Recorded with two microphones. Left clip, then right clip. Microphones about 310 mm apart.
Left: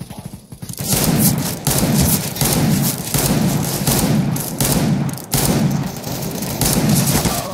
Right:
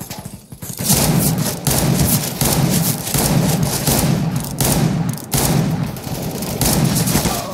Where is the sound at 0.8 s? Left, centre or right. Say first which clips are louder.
Right 1 dB; centre.